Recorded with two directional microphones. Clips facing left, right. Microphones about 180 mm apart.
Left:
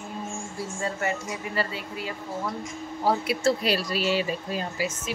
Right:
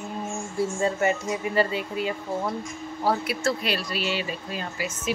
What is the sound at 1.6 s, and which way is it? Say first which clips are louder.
Speech: right 6 dB; 20° right (ahead or behind).